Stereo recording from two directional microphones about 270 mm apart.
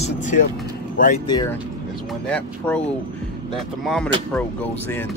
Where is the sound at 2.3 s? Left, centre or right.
Centre.